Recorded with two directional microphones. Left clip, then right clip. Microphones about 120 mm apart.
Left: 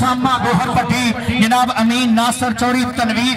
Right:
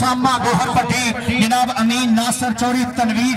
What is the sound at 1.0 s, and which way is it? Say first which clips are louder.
Speech: left 1 dB; 35° right (ahead or behind).